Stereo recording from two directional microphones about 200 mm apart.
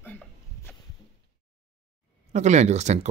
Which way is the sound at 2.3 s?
35° right (ahead or behind).